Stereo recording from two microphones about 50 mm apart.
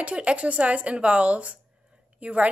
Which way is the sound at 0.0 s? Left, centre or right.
Right.